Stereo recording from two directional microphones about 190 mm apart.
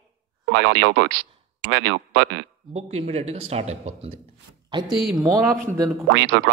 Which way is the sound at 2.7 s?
35° right (ahead or behind).